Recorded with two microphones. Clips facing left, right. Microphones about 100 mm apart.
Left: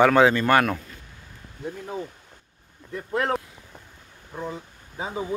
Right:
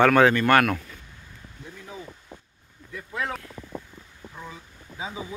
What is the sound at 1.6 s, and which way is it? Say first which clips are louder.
Speech: left 8 dB; 50° left (ahead or behind).